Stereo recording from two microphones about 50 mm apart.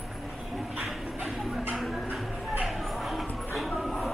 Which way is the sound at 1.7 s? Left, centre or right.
Centre.